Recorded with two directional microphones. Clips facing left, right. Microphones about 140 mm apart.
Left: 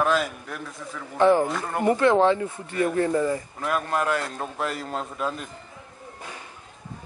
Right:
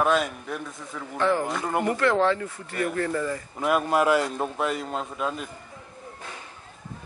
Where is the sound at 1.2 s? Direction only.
20° left (ahead or behind).